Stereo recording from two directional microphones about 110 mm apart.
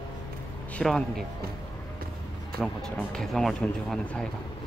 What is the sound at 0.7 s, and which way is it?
Speech, 5° left (ahead or behind).